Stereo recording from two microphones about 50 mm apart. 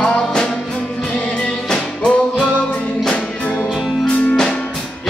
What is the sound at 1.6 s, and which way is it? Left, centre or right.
Music, centre.